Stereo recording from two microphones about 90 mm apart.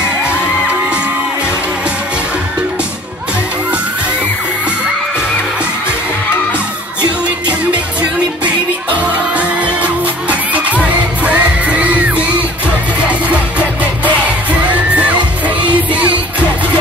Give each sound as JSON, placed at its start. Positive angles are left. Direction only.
{"t": 7.4, "sound": "music", "side_deg": -15}
{"t": 9.3, "sound": "music", "side_deg": -15}
{"t": 14.7, "sound": "music", "side_deg": -15}